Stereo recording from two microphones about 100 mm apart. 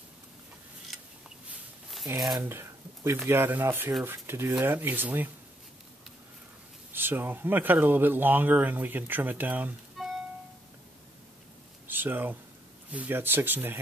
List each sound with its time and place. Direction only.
0.9 s a sound: centre (ahead or behind)
2.0 s speech: 40° right (ahead or behind)
2.4 s a sound: 25° right (ahead or behind)
3.3 s speech: 20° right (ahead or behind)
6.9 s speech: 20° right (ahead or behind)
10.0 s music: centre (ahead or behind)
11.9 s speech: 20° right (ahead or behind)